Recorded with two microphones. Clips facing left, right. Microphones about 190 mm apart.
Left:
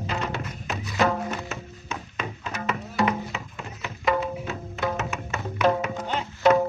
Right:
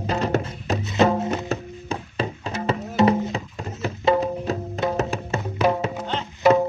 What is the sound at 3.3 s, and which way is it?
Music, 35° right (ahead or behind).